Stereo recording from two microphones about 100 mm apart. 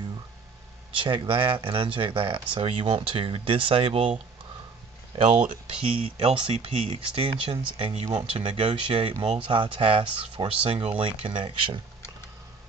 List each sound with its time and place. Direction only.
0.9 s speech: 55° right (ahead or behind)
5.1 s speech: 70° right (ahead or behind)
5.7 s speech: 85° right
6.3 s speech: 70° right (ahead or behind)
8.1 s speech: 60° right (ahead or behind)